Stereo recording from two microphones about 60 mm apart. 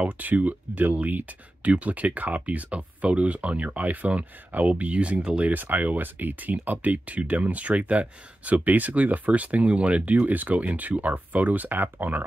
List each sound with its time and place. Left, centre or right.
0.0 s speech: right
5.4 s speech: right